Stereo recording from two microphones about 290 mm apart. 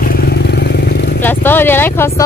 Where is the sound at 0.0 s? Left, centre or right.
Left.